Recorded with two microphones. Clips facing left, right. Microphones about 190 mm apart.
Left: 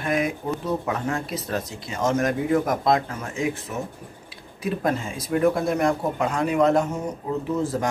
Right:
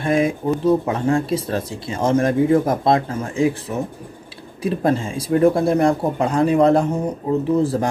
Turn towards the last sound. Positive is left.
turn(degrees=-35)  # may be behind; listen again after turning